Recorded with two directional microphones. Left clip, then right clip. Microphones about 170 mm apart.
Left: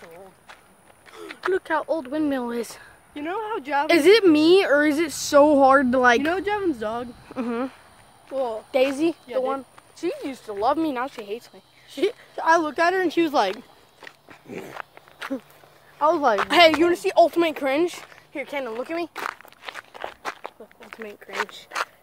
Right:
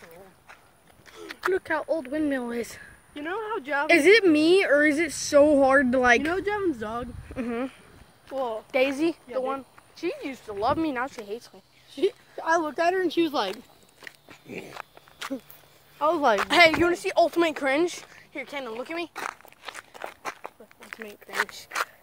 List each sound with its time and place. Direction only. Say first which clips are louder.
1.2 s a sound: even; 55° right (ahead or behind)
1.5 s speech: left 3 dB; centre (ahead or behind)
3.2 s speech: left 3 dB; 20° left (ahead or behind)
3.8 s a woman's voice: left 2 dB; 5° left (ahead or behind)
8.7 s speech: left 3 dB; centre (ahead or behind)
11.9 s a woman's voice: left 2 dB; 55° left (ahead or behind)
13.0 s speech: left 3 dB; 85° left
14.3 s a sound: left 3 dB; 5° left (ahead or behind)
14.7 s walk: left 4 dB; 65° right (ahead or behind)
16.0 s a woman's voice: left 3 dB; centre (ahead or behind); by 19.0 s 15° left (ahead or behind)
19.1 s walk: left 3 dB; 30° right (ahead or behind)
19.7 s crunch: left 4 dB; 55° right (ahead or behind)
20.1 s walk: left 3 dB; 30° right (ahead or behind)
21.5 s speech: left 1 dB; 60° right (ahead or behind)